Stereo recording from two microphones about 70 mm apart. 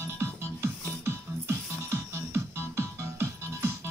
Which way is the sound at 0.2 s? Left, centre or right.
Right.